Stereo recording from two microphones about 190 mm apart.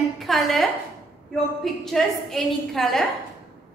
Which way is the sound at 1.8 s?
Centre (ahead or behind).